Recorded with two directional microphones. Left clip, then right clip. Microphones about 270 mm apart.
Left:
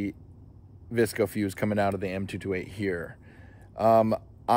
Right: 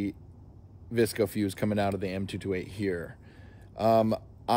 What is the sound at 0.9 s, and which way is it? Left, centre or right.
Speech, centre.